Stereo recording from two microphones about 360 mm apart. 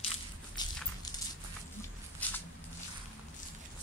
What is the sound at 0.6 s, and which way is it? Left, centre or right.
Walk, centre.